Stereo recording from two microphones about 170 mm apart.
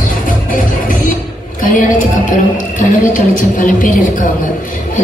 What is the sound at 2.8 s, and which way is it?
A woman's voice, 50° left (ahead or behind).